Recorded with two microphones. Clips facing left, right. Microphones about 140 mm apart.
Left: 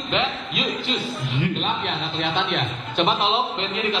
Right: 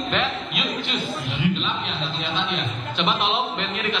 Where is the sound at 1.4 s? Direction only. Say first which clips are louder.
Left 1 dB; 50° left (ahead or behind).